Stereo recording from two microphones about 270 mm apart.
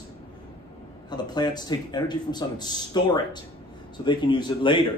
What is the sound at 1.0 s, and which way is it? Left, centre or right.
Speech, centre.